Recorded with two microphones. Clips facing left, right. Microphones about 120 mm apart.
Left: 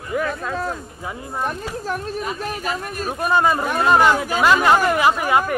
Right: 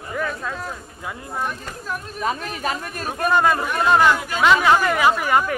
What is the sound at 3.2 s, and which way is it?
Speech, 10° left (ahead or behind).